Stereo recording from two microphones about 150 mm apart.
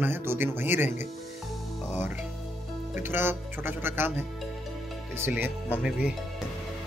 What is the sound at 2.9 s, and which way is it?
Speech, 15° right (ahead or behind).